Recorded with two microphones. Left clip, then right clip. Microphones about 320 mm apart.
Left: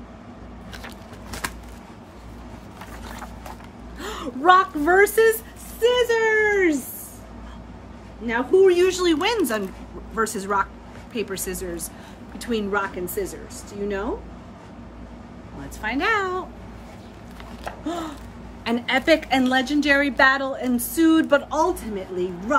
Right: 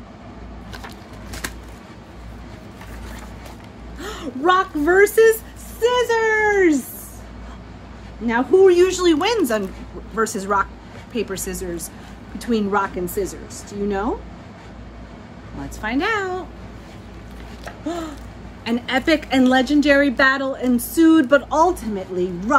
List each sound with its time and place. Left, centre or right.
4.0 s a woman's voice: centre
8.3 s a woman's voice: centre
15.8 s a woman's voice: centre
18.6 s a woman's voice: centre